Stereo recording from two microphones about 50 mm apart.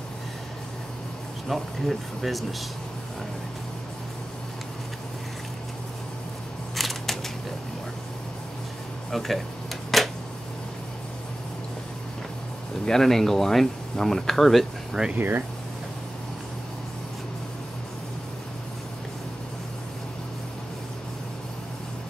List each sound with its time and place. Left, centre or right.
1.5 s speech: centre
6.7 s a sound: centre
9.1 s speech: centre
9.9 s a sound: centre
12.8 s speech: centre
15.1 s speech: right